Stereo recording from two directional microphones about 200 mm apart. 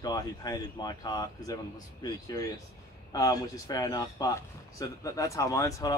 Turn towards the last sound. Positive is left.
turn(degrees=15)  # may be behind; listen again after turning